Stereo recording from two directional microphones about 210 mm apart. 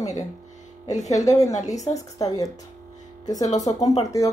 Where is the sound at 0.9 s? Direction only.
35° left (ahead or behind).